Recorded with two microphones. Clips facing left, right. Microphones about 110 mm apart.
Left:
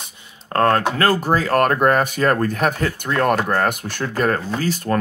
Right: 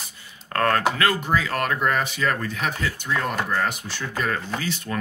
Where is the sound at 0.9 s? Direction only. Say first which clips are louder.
Left 5 dB; 35° left (ahead or behind).